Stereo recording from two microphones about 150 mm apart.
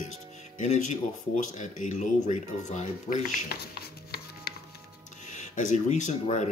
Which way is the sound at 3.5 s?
90° left.